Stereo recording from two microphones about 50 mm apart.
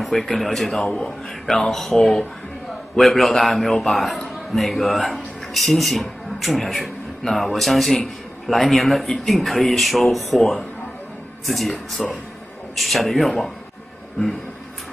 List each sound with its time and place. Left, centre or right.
0.0 s a man's voice: centre
1.4 s speech: centre